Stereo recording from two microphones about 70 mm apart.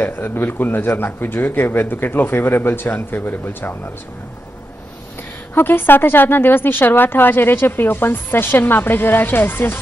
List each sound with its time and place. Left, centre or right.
0.0 s speech: left
5.5 s a woman's voice: left